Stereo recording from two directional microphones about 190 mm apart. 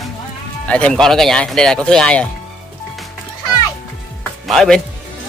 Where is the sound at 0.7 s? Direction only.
5° left (ahead or behind).